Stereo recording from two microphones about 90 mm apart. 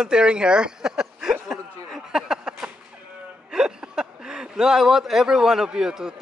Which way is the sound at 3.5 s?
10° right (ahead or behind).